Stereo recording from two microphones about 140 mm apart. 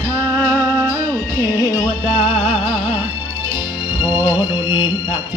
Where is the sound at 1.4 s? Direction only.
20° left (ahead or behind).